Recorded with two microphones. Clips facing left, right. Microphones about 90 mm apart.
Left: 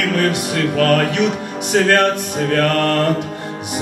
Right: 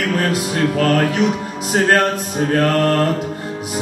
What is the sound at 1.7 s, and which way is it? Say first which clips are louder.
Speech: left 1 dB; 35° right (ahead or behind).